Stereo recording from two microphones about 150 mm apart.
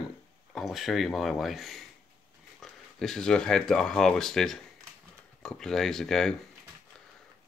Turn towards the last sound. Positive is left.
turn(degrees=5)  # may be behind; listen again after turning